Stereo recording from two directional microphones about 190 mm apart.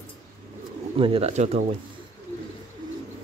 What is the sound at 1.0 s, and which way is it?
Speech, 30° right (ahead or behind).